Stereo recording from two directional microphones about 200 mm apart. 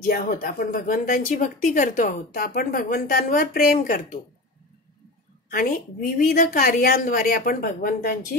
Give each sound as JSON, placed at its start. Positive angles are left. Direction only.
{"t": 0.1, "sound": "speech", "side_deg": 45}
{"t": 5.5, "sound": "speech", "side_deg": 45}